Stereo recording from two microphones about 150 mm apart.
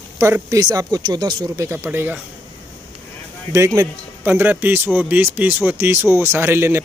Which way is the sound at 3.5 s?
20° right (ahead or behind).